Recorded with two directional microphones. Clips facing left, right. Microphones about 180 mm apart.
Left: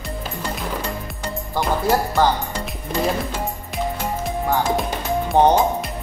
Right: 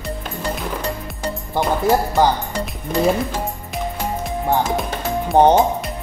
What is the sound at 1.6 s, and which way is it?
Music, 20° right (ahead or behind).